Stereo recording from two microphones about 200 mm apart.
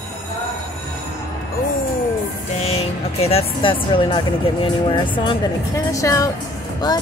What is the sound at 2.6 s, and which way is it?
A woman's voice, 30° left (ahead or behind).